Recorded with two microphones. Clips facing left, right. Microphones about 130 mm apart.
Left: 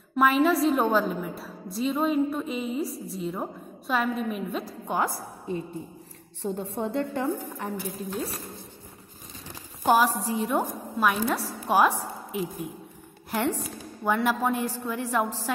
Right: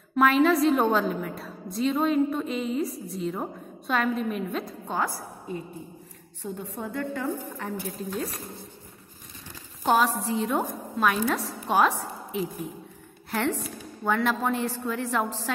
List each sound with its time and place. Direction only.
0.1 s a woman's voice: 5° left (ahead or behind)
4.8 s a woman's voice: 15° left (ahead or behind)
6.4 s a woman's voice: 30° left (ahead or behind)
9.8 s a woman's voice: 10° left (ahead or behind)
13.3 s a woman's voice: 10° left (ahead or behind)